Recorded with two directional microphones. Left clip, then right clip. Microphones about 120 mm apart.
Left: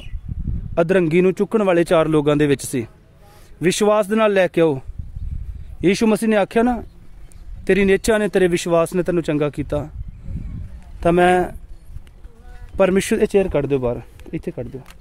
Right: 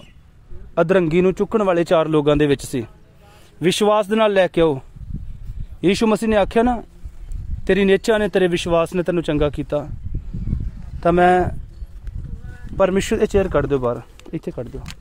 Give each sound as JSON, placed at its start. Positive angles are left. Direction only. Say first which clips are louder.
{"t": 0.7, "sound": "a man's voice", "louder": "even", "side_deg": 30}
{"t": 11.0, "sound": "speech", "louder": "right 1 dB", "side_deg": 40}
{"t": 12.7, "sound": "speech", "louder": "left 1 dB", "side_deg": 45}
{"t": 13.3, "sound": "speech", "louder": "even", "side_deg": 25}